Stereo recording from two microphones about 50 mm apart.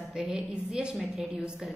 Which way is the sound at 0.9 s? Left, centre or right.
Centre.